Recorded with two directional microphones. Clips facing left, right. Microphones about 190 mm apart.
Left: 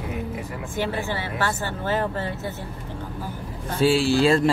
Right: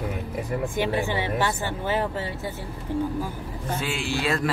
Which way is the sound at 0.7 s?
15° right (ahead or behind).